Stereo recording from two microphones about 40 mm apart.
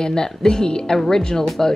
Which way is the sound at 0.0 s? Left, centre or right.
Centre.